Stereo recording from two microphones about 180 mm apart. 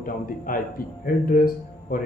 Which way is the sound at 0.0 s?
50° left (ahead or behind).